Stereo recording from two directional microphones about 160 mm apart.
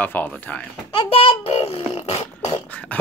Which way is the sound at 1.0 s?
35° left (ahead or behind).